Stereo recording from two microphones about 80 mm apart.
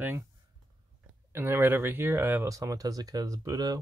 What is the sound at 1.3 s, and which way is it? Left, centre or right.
Speech, right.